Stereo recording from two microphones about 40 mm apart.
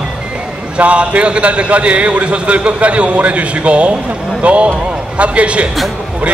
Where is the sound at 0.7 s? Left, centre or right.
Right.